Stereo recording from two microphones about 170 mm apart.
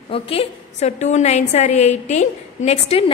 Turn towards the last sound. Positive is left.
turn(degrees=35)  # may be behind; listen again after turning